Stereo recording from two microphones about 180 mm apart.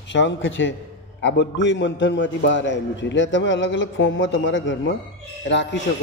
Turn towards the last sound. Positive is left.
turn(degrees=90)